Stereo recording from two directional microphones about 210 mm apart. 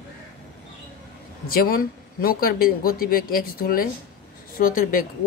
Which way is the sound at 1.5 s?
45° left (ahead or behind).